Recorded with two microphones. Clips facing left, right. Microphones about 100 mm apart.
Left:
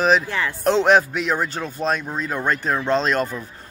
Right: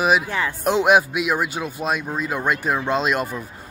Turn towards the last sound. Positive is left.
turn(degrees=-10)  # may be behind; listen again after turning